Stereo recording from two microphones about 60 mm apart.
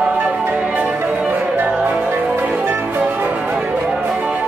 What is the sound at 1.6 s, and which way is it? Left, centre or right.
Music, right.